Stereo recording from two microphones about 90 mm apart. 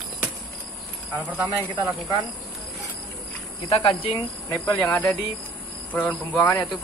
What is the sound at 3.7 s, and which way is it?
Speech, 90° left.